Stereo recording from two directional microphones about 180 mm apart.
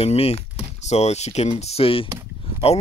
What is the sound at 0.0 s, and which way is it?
Speech, 35° left (ahead or behind).